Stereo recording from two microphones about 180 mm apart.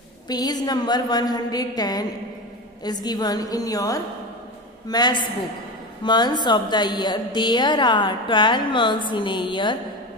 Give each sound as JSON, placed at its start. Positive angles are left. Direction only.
{"t": 0.3, "sound": "a woman's voice", "side_deg": 20}